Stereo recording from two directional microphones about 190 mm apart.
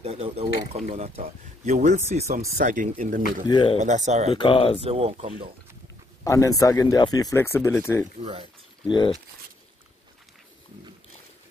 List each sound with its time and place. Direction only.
0.0 s speech: 35° right (ahead or behind)
3.4 s speech: 25° left (ahead or behind)
3.8 s speech: 40° right (ahead or behind)
4.3 s speech: 25° left (ahead or behind)
4.8 s speech: 30° right (ahead or behind)
6.2 s speech: 15° left (ahead or behind)
8.2 s speech: 25° right (ahead or behind)
8.8 s speech: 25° left (ahead or behind)